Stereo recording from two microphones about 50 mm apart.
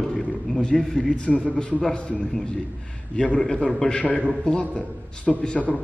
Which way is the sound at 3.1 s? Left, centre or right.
Centre.